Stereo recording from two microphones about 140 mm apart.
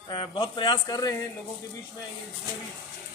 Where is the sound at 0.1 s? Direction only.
35° left (ahead or behind).